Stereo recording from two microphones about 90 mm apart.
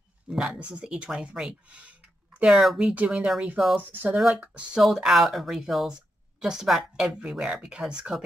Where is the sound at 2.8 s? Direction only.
15° right (ahead or behind).